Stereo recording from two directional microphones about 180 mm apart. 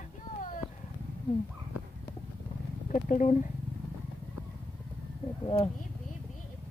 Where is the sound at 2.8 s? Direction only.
45° left (ahead or behind).